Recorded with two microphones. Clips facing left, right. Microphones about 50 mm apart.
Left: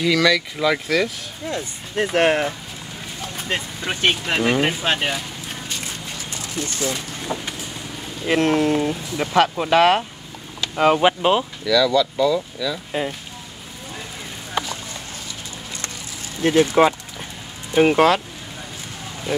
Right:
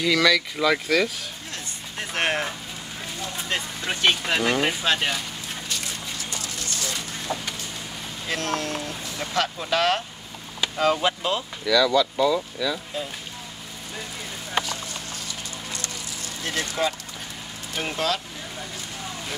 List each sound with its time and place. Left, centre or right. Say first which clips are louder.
0.0 s speech: left 2 dB; centre
2.1 s speech: left 6 dB; centre
6.6 s speech: left 9 dB; left
11.6 s speech: even; centre
16.4 s speech: left 11 dB; left